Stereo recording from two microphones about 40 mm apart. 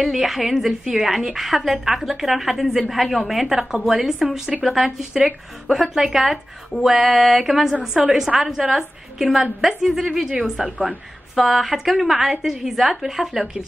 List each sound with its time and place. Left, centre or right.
0.0 s a woman's voice: centre